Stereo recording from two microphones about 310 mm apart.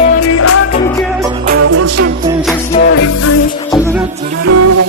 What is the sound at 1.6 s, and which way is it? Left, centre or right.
Music, right.